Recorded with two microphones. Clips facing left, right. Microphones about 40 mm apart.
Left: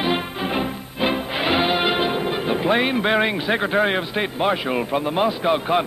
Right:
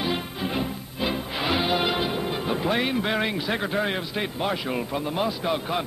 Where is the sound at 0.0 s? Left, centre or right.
Left.